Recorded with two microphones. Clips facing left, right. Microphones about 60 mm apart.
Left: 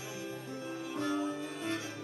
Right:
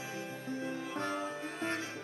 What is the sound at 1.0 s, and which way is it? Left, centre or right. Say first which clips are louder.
Music: left 5 dB; right.